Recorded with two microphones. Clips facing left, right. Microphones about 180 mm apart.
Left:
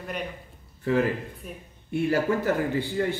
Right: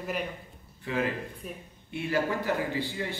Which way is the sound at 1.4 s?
Centre (ahead or behind).